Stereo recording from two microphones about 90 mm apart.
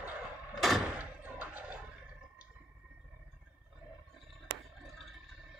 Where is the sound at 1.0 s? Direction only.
15° right (ahead or behind).